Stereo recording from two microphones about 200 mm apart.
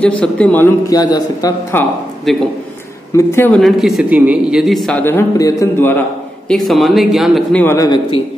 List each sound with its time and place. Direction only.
0.0 s speech: 5° left (ahead or behind)
6.5 s speech: centre (ahead or behind)
7.6 s speech: 15° left (ahead or behind)